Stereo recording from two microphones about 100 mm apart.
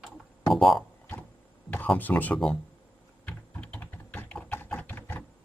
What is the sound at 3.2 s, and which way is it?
Typing, 15° left (ahead or behind).